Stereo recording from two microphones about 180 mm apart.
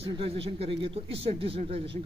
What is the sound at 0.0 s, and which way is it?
A man's voice, 35° right (ahead or behind).